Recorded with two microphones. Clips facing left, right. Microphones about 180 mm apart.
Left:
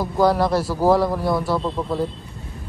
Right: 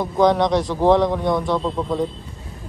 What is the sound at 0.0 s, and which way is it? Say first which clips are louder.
A man's voice: right 1 dB; 5° left (ahead or behind).